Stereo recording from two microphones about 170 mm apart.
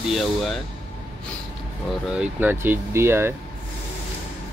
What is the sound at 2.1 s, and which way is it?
Speech, 10° right (ahead or behind).